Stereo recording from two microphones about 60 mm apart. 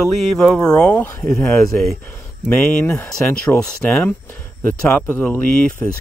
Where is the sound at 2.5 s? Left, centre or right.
Left.